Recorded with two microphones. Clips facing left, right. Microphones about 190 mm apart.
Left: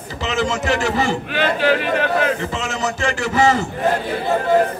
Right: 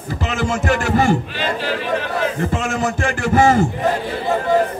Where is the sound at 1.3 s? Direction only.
65° left (ahead or behind).